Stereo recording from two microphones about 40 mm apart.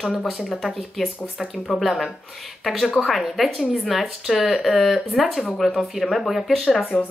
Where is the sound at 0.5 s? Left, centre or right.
Centre.